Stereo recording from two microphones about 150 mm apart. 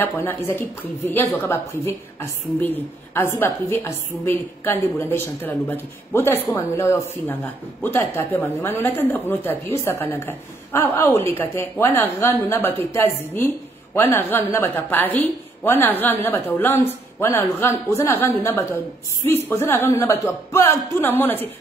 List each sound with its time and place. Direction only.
0.0 s a woman's voice: 15° left (ahead or behind)